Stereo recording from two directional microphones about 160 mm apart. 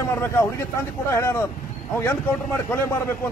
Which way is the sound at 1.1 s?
15° left (ahead or behind).